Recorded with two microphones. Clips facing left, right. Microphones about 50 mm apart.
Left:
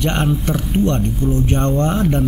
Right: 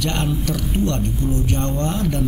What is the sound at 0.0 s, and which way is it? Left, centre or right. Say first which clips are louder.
Speech: left 4 dB; left.